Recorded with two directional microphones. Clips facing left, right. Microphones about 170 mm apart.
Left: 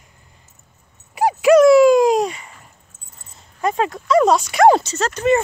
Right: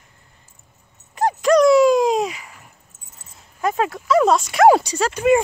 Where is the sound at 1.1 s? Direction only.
10° left (ahead or behind).